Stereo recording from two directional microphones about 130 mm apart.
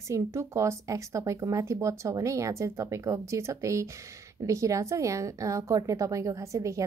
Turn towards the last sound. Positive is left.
turn(degrees=-25)  # may be behind; listen again after turning